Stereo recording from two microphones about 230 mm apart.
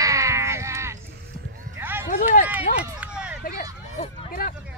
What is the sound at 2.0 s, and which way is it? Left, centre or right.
Speech, left.